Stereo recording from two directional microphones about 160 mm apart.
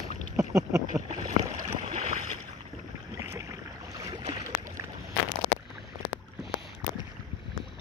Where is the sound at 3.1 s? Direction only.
15° right (ahead or behind).